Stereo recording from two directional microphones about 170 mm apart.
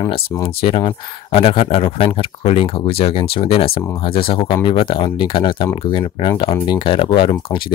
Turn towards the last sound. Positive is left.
turn(degrees=30)  # may be behind; listen again after turning